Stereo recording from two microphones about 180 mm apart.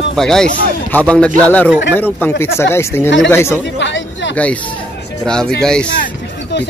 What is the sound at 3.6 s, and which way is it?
Speech, 85° left.